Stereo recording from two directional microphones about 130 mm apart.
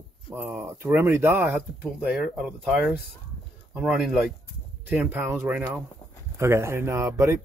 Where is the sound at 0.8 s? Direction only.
20° right (ahead or behind).